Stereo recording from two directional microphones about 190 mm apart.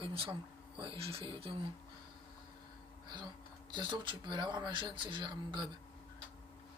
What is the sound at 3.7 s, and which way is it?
Speech, 25° right (ahead or behind).